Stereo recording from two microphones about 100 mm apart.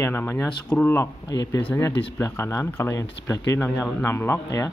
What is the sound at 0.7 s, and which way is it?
Speech, 10° left (ahead or behind).